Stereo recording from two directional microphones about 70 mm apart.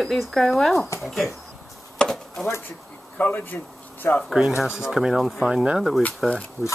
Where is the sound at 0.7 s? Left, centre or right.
Left.